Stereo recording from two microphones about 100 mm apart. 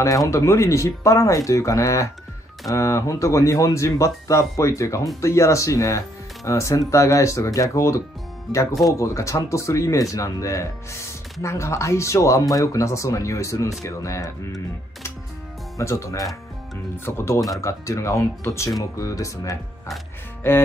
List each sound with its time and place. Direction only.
0.0 s speech: 30° left (ahead or behind)
15.8 s speech: 30° left (ahead or behind)